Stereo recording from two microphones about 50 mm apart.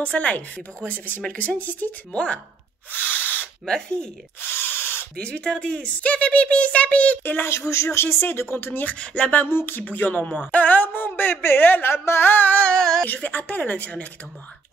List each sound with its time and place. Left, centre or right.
0.0 s a woman's voice: left
2.1 s a woman's voice: left
2.9 s a sound: left
3.6 s speech: centre
4.4 s drill: left
5.2 s a woman's voice: centre
7.7 s speech: left
8.8 s a woman's voice: left
9.4 s a woman's voice: left
10.2 s a sound: left
11.9 s a sound: left
12.7 s whimper: centre
13.0 s a woman's voice: left